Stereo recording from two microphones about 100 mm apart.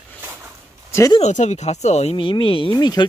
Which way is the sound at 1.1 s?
90° left.